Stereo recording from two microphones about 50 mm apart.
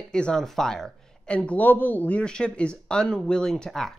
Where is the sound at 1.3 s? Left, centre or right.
Left.